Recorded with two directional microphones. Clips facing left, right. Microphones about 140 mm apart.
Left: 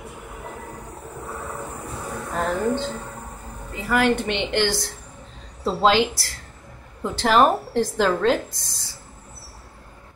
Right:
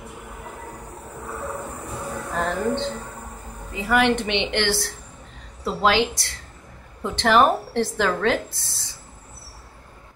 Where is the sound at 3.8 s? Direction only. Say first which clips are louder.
Even; 5° left (ahead or behind).